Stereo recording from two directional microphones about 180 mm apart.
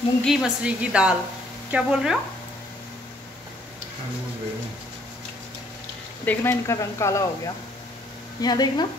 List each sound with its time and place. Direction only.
0.2 s a woman's voice: centre (ahead or behind)
6.2 s speech: 15° left (ahead or behind)